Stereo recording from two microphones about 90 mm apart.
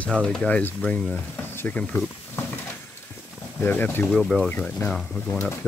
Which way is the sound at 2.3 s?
20° left (ahead or behind).